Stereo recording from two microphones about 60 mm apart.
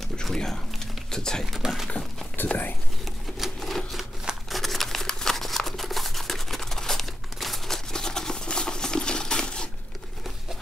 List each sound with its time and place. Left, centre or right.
0.2 s speech: centre
1.5 s speech: centre
2.4 s speech: left
3.3 s sewing machine: centre
4.5 s scissors: centre